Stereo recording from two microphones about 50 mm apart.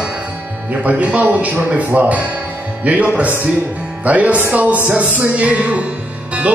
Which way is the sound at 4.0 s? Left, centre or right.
Right.